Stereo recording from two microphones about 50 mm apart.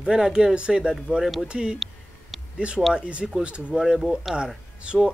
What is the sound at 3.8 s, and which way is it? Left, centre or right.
Speech, centre.